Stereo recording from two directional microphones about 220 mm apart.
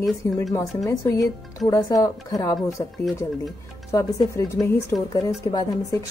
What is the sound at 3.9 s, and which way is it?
Speech, 15° left (ahead or behind).